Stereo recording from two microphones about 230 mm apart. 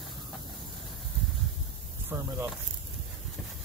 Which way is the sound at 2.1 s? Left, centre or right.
Centre.